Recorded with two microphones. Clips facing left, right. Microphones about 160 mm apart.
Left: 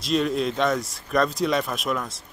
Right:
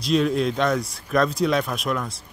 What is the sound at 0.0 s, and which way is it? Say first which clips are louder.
Speech: right 2 dB; centre (ahead or behind).